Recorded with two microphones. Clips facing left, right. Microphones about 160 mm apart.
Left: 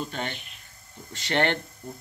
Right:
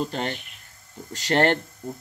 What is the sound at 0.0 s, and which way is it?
Speech, 40° right (ahead or behind).